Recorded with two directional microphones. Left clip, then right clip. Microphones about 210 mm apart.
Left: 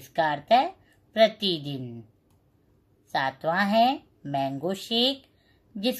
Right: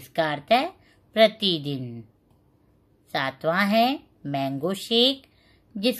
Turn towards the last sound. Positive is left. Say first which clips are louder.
# right 4 dB
turn(degrees=-15)  # may be behind; listen again after turning